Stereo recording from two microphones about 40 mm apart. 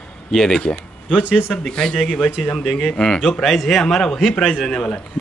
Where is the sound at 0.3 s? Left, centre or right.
Centre.